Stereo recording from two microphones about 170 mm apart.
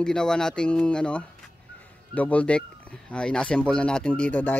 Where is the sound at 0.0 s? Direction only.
5° left (ahead or behind).